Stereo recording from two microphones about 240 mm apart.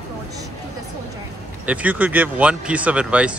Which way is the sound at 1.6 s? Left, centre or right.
Centre.